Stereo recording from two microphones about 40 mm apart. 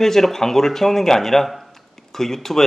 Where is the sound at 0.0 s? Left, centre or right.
Centre.